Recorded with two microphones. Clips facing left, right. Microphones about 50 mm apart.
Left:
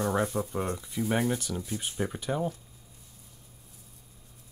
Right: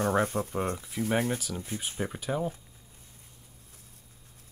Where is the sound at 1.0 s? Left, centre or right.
Right.